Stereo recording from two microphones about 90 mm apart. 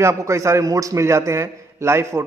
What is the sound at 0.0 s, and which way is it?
A man's voice, 30° right (ahead or behind).